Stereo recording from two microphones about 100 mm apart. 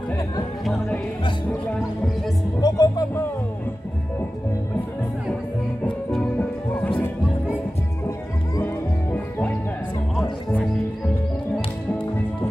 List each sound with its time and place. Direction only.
2.6 s music: 40° left (ahead or behind)
6.1 s music: 15° left (ahead or behind)